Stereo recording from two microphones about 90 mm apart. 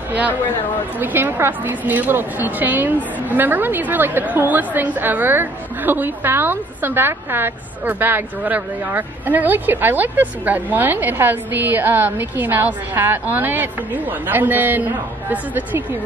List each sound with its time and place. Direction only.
0.9 s a woman's voice: 20° right (ahead or behind)